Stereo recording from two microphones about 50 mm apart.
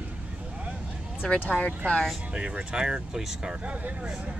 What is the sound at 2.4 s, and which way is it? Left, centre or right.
Speech, right.